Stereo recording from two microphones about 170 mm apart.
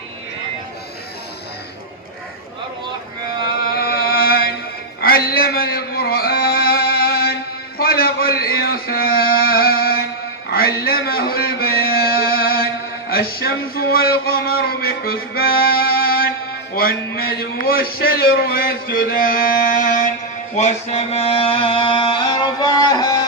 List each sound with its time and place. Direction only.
3.8 s music: 65° left (ahead or behind)
7.8 s a sound: 65° left (ahead or behind)
16.7 s a man's voice: 60° left (ahead or behind)
20.5 s music: 40° left (ahead or behind); by 23.2 s 20° left (ahead or behind)